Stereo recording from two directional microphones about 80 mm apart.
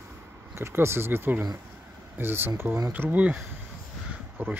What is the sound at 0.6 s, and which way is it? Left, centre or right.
Speech, right.